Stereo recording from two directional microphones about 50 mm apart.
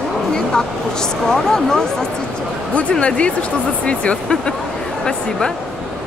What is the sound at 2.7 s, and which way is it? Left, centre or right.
Speech, left.